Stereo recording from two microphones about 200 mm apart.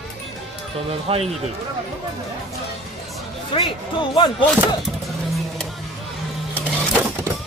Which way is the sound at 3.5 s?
30° left (ahead or behind).